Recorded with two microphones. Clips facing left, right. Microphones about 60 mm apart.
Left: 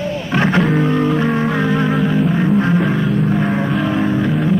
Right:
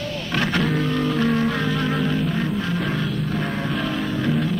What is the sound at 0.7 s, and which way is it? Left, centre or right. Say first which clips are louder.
Music: left 6 dB; left.